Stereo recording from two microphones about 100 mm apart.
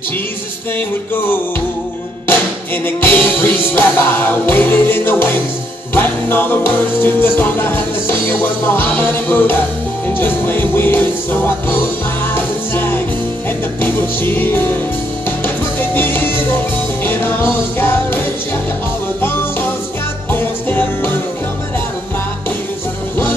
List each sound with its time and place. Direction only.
3.0 s music: 20° left (ahead or behind)
20.3 s music: 20° left (ahead or behind)